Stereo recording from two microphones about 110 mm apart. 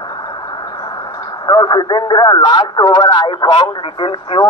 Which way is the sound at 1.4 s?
45° left (ahead or behind).